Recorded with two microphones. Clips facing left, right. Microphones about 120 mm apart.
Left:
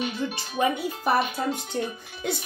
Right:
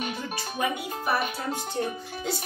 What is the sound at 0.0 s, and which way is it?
Music, 50° right (ahead or behind).